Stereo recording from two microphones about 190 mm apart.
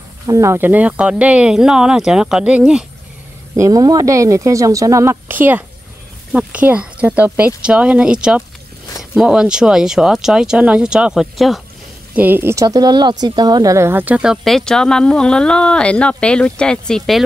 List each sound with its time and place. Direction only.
0.3 s speech: 15° right (ahead or behind)
3.5 s speech: 20° right (ahead or behind); by 11.6 s centre (ahead or behind)
12.2 s speech: 10° right (ahead or behind)